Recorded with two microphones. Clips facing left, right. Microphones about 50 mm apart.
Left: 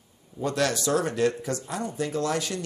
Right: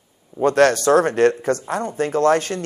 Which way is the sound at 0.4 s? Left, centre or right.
Right.